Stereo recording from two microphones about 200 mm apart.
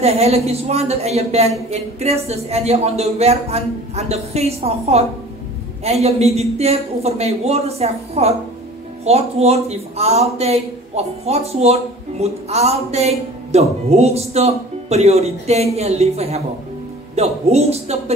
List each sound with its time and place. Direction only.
0.0 s a man's voice: 30° right (ahead or behind)